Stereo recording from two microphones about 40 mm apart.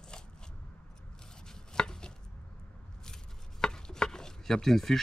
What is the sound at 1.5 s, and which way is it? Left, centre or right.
Chopping, centre.